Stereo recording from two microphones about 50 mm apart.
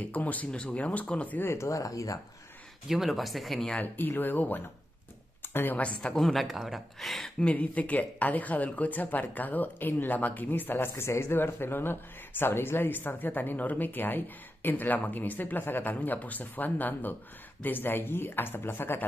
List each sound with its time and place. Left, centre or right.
0.1 s speech: left
1.4 s speech: left
2.9 s speech: centre
3.8 s speech: left
5.5 s speech: left
5.8 s speech: left
6.1 s speech: centre
7.5 s speech: left
11.1 s speech: left